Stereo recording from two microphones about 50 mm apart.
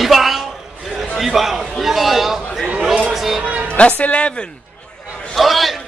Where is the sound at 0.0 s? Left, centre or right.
Centre.